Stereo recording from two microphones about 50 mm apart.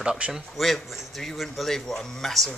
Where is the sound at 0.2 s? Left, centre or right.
Right.